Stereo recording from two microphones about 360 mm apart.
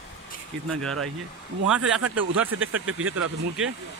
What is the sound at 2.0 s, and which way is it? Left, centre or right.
Speech, right.